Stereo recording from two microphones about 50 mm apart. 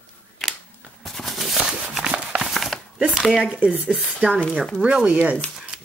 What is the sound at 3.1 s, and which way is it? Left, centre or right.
Speech, centre.